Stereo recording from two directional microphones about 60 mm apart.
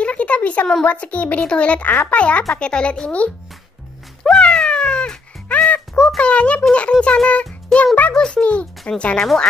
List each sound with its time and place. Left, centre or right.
0.0 s a sound: left
0.8 s a child's voice: left
4.2 s cat: centre
5.9 s a child's voice: centre